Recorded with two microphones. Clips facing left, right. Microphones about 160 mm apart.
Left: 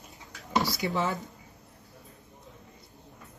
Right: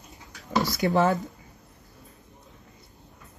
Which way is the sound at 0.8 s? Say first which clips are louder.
Right 7 dB; 45° right (ahead or behind).